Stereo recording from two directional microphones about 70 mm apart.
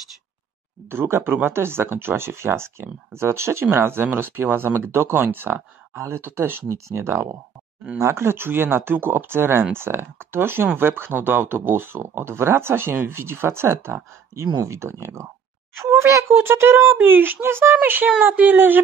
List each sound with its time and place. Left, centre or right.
0.8 s speech: right
6.7 s a child's voice: right